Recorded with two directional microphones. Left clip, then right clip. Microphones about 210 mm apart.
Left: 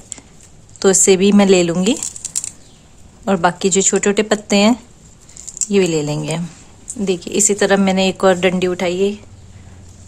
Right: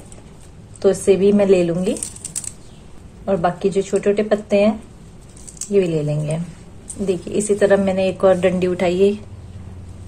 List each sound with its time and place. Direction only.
0.7 s speech: 35° left (ahead or behind)
3.3 s a woman's voice: 35° left (ahead or behind); by 9.2 s 15° left (ahead or behind)